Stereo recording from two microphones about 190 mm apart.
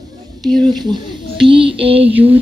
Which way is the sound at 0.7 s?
20° right (ahead or behind).